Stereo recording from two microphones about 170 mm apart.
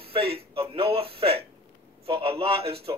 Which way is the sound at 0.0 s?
35° right (ahead or behind).